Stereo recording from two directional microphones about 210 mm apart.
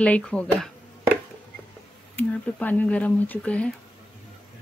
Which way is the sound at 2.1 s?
10° left (ahead or behind).